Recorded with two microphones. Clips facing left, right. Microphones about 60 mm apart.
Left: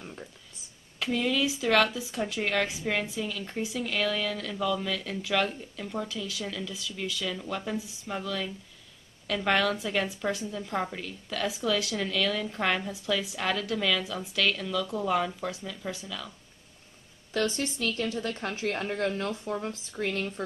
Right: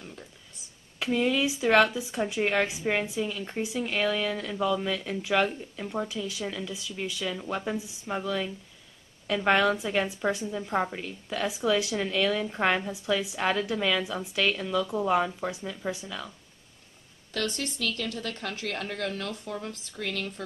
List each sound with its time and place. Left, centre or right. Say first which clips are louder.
0.0 s a sound: left 2 dB; centre
0.9 s a woman's voice: right 2 dB; right
17.3 s speech: left 3 dB; left